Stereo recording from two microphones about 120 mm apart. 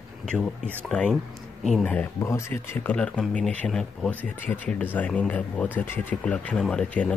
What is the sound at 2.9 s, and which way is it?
Speech, 10° left (ahead or behind).